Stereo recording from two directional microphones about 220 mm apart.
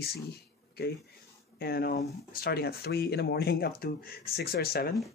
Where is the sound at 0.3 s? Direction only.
45° left (ahead or behind).